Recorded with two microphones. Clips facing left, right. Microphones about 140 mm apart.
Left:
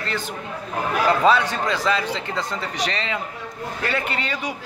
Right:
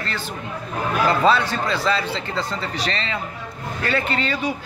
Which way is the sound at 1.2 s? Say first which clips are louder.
Even; 15° left (ahead or behind).